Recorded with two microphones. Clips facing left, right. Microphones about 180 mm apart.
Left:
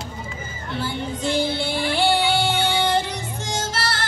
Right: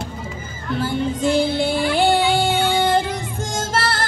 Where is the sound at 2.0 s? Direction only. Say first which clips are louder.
Right 2 dB; 50° right (ahead or behind).